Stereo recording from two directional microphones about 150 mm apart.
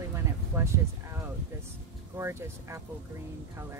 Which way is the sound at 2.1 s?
20° right (ahead or behind).